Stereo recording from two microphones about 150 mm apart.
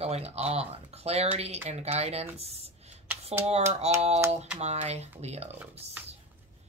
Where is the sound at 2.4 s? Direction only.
45° right (ahead or behind).